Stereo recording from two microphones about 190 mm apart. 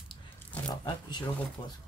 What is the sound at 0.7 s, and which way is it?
Speech, 25° left (ahead or behind).